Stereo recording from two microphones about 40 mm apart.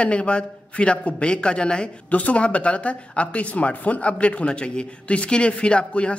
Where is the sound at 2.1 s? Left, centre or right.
Left.